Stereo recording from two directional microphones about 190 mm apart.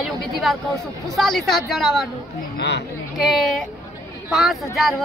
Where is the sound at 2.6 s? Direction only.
65° left (ahead or behind).